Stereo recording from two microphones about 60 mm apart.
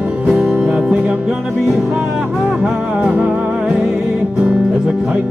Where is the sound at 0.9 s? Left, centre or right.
Right.